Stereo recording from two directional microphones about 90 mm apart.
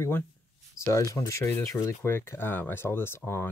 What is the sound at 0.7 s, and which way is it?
Speech, 35° left (ahead or behind).